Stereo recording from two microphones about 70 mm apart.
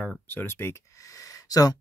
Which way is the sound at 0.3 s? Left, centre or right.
Left.